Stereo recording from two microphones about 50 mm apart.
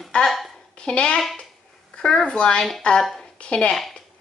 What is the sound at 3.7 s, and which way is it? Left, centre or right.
Speech, centre.